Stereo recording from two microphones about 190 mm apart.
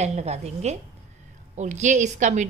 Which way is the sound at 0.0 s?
35° right (ahead or behind).